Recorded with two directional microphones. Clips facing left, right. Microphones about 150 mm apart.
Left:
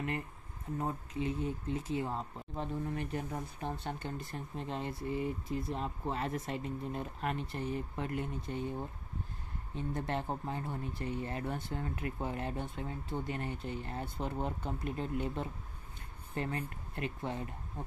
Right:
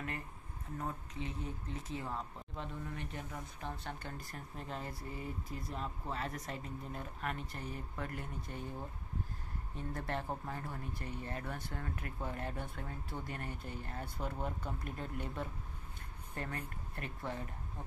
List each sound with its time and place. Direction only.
1.2 s speech: 35° right (ahead or behind)
2.0 s speech: 30° left (ahead or behind)
3.8 s speech: 25° left (ahead or behind)
9.9 s speech: 25° left (ahead or behind)